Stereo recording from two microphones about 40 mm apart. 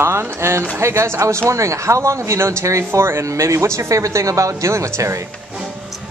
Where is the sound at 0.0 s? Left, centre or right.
Right.